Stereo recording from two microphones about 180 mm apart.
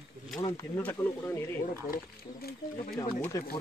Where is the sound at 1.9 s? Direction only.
60° left (ahead or behind).